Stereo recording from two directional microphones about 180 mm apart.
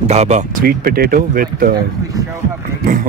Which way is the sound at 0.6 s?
55° right (ahead or behind).